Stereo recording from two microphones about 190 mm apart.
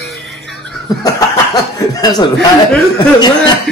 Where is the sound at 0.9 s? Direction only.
20° left (ahead or behind).